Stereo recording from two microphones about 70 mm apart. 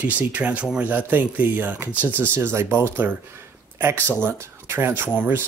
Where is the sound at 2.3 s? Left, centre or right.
Right.